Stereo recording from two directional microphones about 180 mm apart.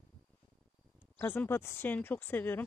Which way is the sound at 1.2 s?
10° left (ahead or behind).